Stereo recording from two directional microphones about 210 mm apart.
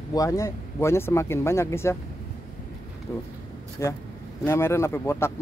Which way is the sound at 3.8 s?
15° left (ahead or behind).